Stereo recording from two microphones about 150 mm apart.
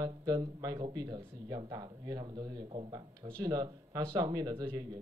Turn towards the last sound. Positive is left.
turn(degrees=-30)  # may be behind; listen again after turning